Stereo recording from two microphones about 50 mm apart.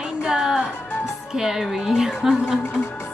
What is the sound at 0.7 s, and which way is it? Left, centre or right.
Music, left.